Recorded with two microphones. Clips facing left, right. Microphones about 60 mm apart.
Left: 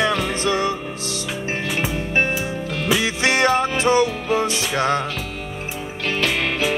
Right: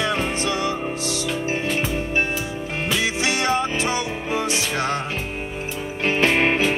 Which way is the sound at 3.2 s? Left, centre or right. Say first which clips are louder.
Left 6 dB; left.